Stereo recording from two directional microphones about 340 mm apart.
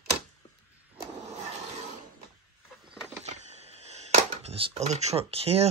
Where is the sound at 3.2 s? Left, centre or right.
Centre.